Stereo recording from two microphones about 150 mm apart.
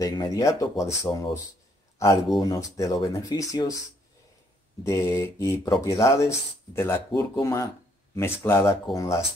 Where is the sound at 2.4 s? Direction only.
25° left (ahead or behind).